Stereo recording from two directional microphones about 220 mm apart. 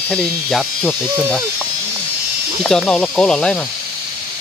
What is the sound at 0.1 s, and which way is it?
Speech, 5° left (ahead or behind).